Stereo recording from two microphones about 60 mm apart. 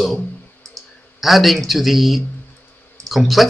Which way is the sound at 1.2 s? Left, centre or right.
Centre.